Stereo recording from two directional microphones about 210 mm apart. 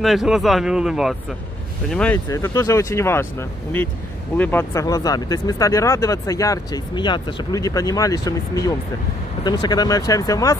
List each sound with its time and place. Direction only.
0.0 s speech: centre (ahead or behind)
2.1 s speech: 15° left (ahead or behind)